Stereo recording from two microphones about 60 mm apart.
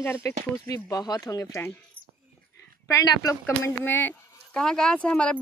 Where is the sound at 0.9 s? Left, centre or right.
Left.